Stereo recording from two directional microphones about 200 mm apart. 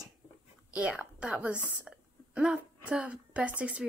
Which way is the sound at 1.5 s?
10° left (ahead or behind).